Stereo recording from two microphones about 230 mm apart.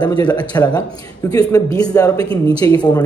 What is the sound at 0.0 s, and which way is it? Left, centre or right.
Speech, centre.